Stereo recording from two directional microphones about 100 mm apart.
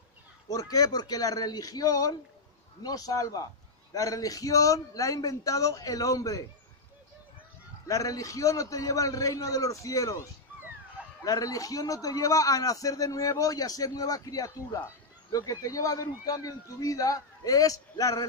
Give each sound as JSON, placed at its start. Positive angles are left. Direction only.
{"t": 0.5, "sound": "a man's voice", "side_deg": 35}
{"t": 7.9, "sound": "a man's voice", "side_deg": 35}
{"t": 11.2, "sound": "a man's voice", "side_deg": 35}